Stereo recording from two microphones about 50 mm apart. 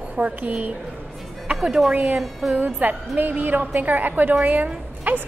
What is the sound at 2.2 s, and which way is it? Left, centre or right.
Music, centre.